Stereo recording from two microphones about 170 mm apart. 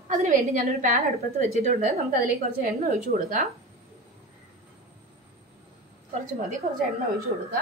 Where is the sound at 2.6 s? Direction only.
50° right (ahead or behind).